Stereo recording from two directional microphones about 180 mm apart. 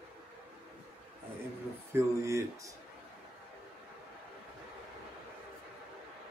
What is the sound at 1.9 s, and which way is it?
Speech, 15° right (ahead or behind).